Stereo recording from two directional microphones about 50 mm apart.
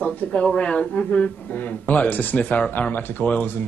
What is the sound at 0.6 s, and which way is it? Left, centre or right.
Speech, left.